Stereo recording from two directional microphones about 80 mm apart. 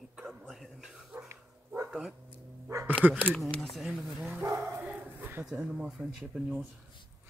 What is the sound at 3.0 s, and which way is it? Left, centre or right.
Speech, centre.